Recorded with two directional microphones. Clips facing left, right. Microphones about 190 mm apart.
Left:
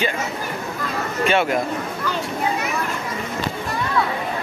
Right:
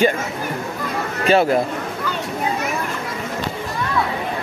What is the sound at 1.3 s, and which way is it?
Speech, 35° right (ahead or behind).